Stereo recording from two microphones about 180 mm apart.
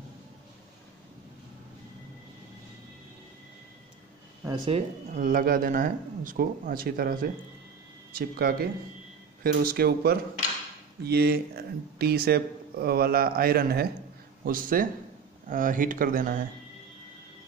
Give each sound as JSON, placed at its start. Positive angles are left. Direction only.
{"t": 4.5, "sound": "speech", "side_deg": -35}
{"t": 5.2, "sound": "speech", "side_deg": -50}